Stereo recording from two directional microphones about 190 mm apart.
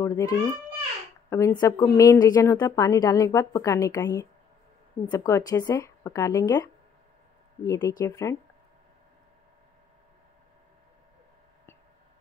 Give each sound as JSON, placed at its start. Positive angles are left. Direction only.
{"t": 0.0, "sound": "a woman's voice", "side_deg": 15}